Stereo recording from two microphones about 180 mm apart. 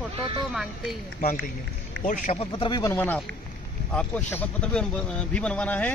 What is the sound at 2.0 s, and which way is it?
Speech, 45° left (ahead or behind).